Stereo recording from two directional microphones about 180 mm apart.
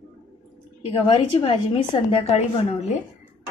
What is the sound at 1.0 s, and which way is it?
A woman's voice, 30° left (ahead or behind).